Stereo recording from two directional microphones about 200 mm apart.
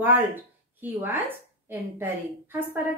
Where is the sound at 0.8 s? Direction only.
10° right (ahead or behind).